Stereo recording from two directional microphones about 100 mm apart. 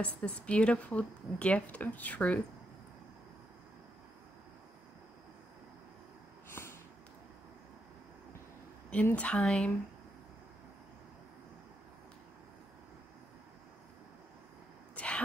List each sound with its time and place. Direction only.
0.0 s speech: 10° left (ahead or behind)
6.5 s snort: 25° left (ahead or behind)
9.0 s speech: 10° left (ahead or behind)
15.0 s a sound: 10° left (ahead or behind)